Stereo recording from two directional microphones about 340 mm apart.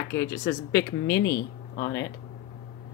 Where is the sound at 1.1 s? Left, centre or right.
Left.